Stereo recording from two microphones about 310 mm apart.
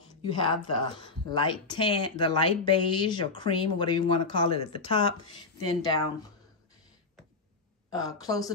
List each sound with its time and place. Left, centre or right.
0.1 s speech: centre
7.9 s speech: centre